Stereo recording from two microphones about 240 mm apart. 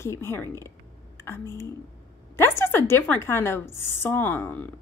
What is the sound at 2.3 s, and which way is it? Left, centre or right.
A woman's voice, centre.